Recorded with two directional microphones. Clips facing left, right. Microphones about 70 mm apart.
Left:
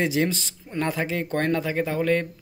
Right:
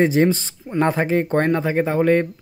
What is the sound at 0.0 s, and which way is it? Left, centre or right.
Speech, right.